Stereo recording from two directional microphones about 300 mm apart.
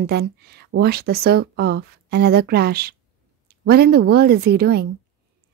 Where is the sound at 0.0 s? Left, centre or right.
Right.